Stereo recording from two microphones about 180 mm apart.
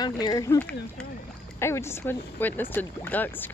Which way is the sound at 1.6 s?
15° left (ahead or behind).